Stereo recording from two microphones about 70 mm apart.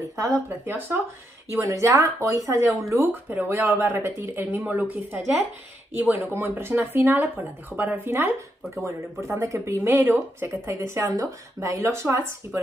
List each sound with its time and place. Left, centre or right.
0.0 s speech: right
0.7 s speech: right
1.6 s speech: right
2.9 s speech: right
9.2 s speech: right
9.8 s speech: right